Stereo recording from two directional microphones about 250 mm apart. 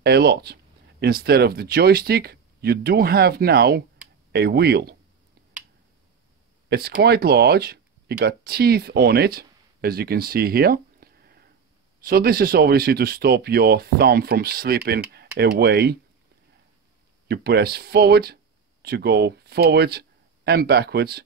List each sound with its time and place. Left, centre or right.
0.0 s speech: right
6.7 s speech: right
17.3 s speech: right